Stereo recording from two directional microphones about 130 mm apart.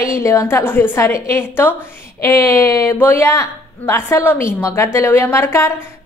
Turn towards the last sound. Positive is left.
turn(degrees=20)  # may be behind; listen again after turning